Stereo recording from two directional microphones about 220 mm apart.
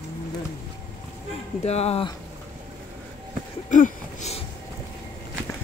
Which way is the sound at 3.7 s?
35° left (ahead or behind).